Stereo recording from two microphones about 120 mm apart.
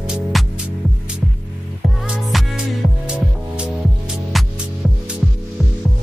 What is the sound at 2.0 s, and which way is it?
Music, centre (ahead or behind).